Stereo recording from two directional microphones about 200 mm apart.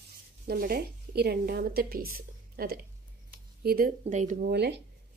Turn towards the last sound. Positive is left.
turn(degrees=-55)  # may be behind; listen again after turning